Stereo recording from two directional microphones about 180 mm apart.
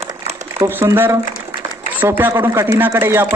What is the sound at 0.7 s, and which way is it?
Speech, 10° right (ahead or behind).